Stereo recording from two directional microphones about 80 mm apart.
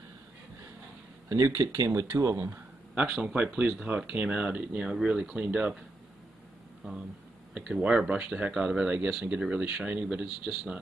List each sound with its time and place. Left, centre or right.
1.3 s speech: right
2.9 s speech: centre
7.5 s speech: centre